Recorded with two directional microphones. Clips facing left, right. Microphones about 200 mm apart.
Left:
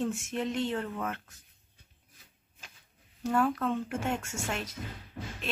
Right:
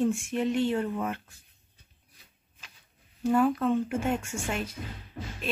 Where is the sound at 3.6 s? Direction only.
5° right (ahead or behind).